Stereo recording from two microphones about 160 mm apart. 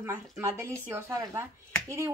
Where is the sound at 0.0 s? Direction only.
15° right (ahead or behind).